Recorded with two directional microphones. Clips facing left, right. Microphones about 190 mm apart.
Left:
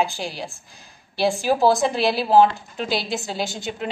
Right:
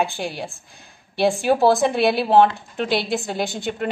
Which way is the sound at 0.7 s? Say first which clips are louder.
Right 1 dB; 55° right (ahead or behind).